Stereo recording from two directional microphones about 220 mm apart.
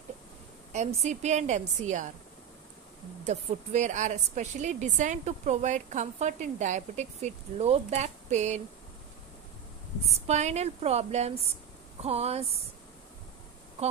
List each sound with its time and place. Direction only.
0.7 s a woman's voice: 30° right (ahead or behind)
3.3 s a woman's voice: 35° right (ahead or behind)
10.1 s a woman's voice: 30° right (ahead or behind)